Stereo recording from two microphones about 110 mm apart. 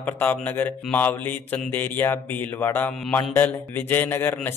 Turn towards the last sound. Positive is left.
turn(degrees=20)  # may be behind; listen again after turning